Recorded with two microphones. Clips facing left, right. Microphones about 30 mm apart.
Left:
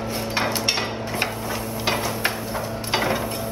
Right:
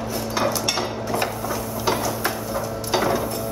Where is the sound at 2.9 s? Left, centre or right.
Left.